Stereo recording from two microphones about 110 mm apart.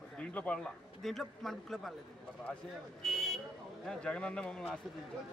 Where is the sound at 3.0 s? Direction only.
Centre (ahead or behind).